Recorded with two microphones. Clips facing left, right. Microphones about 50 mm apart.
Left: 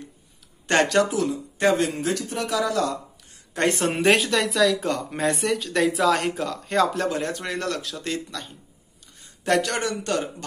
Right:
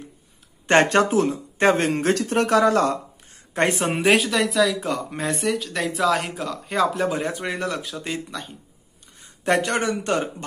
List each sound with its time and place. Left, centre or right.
0.7 s speech: right
3.7 s speech: centre; by 10.3 s right